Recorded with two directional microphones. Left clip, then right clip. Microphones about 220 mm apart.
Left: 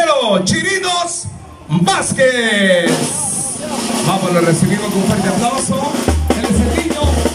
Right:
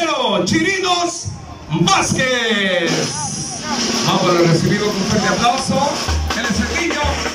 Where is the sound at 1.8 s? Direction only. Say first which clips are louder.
Left 2 dB; 40° left (ahead or behind).